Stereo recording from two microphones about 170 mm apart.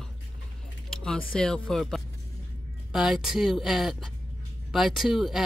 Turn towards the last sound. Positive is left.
turn(degrees=0)  # may be behind; listen again after turning